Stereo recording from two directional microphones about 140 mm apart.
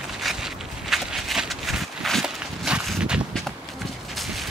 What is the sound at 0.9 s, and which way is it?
Walk, 5° right (ahead or behind).